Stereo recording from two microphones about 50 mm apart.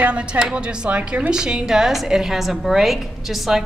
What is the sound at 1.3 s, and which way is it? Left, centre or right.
A woman's voice, centre.